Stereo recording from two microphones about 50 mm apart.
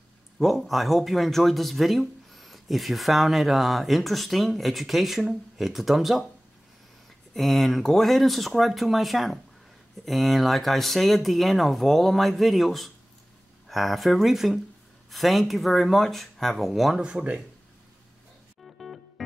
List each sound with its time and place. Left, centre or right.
0.4 s speech: centre
7.3 s speech: centre
17.0 s speech: right
18.6 s music: centre